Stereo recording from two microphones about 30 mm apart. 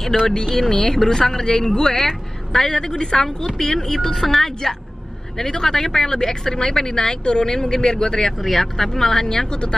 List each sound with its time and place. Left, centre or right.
0.1 s a woman's voice: centre
8.4 s a woman's voice: centre
9.5 s speech: left